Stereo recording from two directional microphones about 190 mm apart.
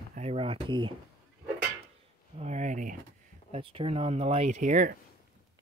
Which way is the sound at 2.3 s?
35° right (ahead or behind).